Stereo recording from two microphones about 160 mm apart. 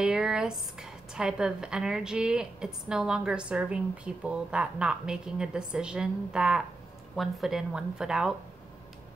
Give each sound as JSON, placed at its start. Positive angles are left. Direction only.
{"t": 0.0, "sound": "speech", "side_deg": -5}